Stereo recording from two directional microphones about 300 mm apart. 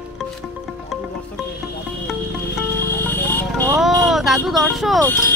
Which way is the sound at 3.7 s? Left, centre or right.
Centre.